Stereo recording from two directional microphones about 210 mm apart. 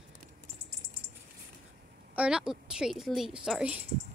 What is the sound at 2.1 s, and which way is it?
A woman's voice, 5° right (ahead or behind).